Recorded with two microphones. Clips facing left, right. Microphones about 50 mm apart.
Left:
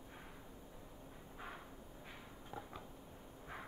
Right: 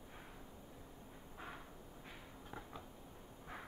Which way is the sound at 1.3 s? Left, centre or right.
Centre.